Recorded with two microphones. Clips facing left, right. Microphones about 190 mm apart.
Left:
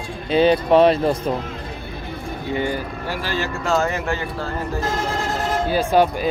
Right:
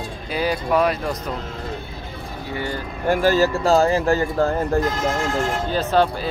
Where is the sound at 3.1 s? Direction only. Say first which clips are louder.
Right 10 dB; 45° right (ahead or behind).